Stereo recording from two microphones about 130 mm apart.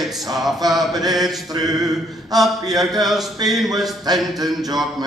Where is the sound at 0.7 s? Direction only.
30° right (ahead or behind).